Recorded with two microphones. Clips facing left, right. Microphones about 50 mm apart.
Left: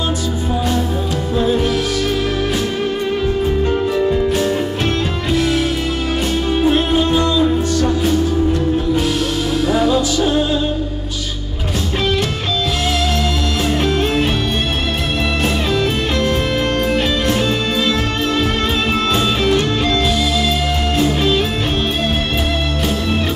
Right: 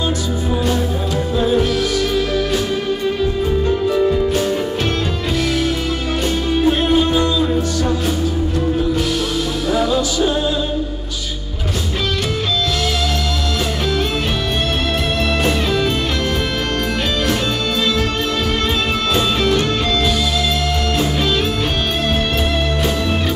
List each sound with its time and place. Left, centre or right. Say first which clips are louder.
3.9 s music: even; centre
6.6 s music: even; centre
9.7 s music: left 1 dB; centre
15.4 s music: left 1 dB; centre
19.1 s music: right 1 dB; centre